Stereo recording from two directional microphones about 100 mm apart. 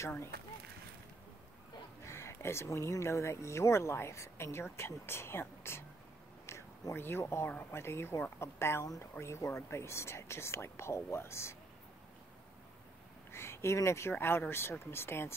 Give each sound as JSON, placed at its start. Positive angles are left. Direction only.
{"t": 2.0, "sound": "speech", "side_deg": 25}
{"t": 13.3, "sound": "speech", "side_deg": 25}